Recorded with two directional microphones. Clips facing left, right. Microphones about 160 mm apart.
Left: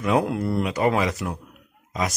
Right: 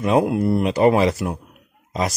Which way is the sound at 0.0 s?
25° right (ahead or behind).